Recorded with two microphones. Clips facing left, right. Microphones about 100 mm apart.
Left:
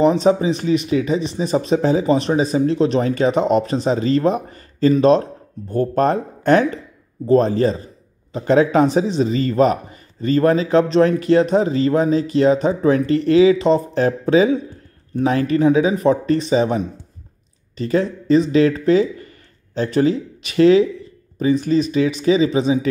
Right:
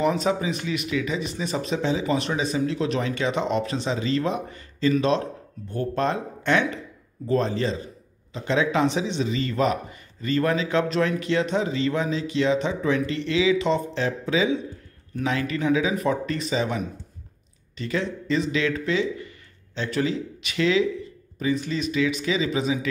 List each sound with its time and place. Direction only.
0.0 s a man's voice: 35° left (ahead or behind)